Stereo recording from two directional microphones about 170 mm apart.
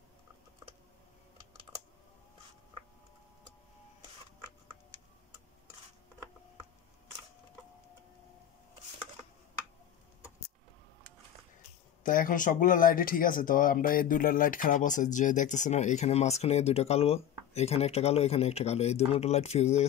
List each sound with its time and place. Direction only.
12.0 s speech: 55° left (ahead or behind)